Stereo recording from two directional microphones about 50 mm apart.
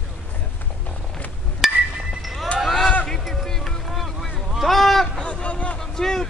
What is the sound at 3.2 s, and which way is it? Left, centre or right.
Music, centre.